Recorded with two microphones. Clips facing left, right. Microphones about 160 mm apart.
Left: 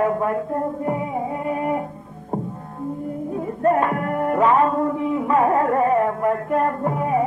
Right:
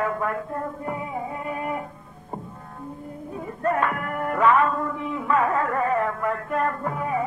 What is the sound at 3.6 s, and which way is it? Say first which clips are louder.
Music: left 5 dB; 30° left (ahead or behind).